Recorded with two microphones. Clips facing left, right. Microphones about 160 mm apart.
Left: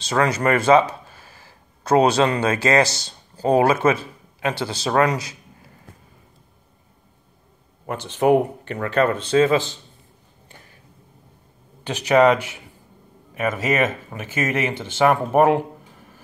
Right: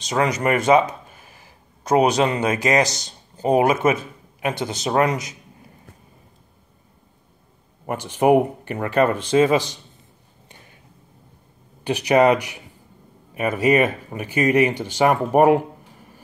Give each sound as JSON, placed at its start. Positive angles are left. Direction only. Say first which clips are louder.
{"t": 0.0, "sound": "speech", "louder": "left 1 dB", "side_deg": -15}
{"t": 7.8, "sound": "speech", "louder": "right 1 dB", "side_deg": -10}
{"t": 11.8, "sound": "speech", "louder": "even", "side_deg": -10}
{"t": 13.6, "sound": "speech", "louder": "right 6 dB", "side_deg": -15}